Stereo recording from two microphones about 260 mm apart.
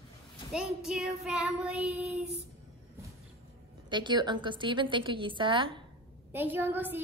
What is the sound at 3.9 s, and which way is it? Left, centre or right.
A woman's voice, centre.